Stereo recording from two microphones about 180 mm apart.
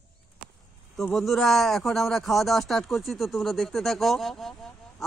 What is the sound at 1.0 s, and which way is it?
A man's voice, centre (ahead or behind).